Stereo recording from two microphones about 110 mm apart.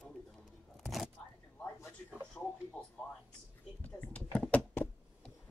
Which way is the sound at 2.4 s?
5° left (ahead or behind).